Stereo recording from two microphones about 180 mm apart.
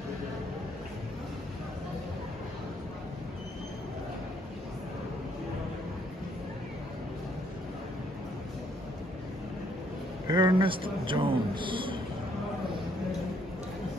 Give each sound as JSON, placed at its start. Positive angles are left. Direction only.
{"t": 10.2, "sound": "a man's voice", "side_deg": -25}